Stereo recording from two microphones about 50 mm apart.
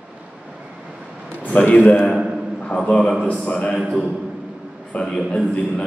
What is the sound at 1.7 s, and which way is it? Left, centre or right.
A man's voice, left.